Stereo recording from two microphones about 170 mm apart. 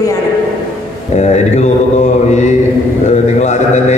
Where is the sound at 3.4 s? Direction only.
45° left (ahead or behind).